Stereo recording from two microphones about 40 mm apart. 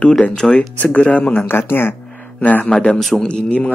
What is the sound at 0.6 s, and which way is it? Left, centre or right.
Speech, left.